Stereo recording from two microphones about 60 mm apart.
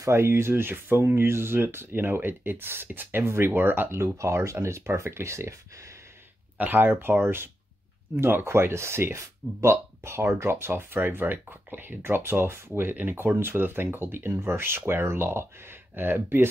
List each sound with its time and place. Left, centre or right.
0.0 s speech: right
6.6 s speech: right